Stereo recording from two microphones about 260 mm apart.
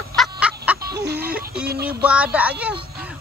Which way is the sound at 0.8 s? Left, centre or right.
Right.